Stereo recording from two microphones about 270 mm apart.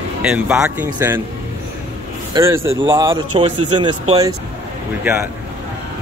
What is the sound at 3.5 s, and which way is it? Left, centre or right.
Speech, right.